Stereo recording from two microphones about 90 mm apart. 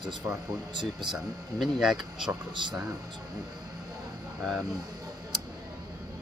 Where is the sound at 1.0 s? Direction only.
5° right (ahead or behind).